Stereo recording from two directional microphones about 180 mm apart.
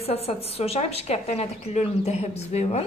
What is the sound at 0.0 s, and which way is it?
A woman's voice, 35° left (ahead or behind).